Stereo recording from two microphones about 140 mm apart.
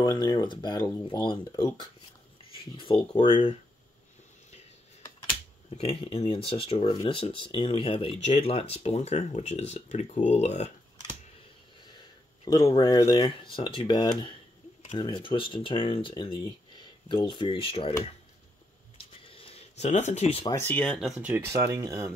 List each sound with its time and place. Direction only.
0.0 s speech: 30° left (ahead or behind)
2.8 s speech: 35° left (ahead or behind)
5.7 s speech: 40° left (ahead or behind)
12.7 s speech: 30° left (ahead or behind)
19.2 s a sound: 40° left (ahead or behind)
20.5 s speech: 15° left (ahead or behind)
21.0 s speech: 10° right (ahead or behind)
21.5 s speech: 20° right (ahead or behind)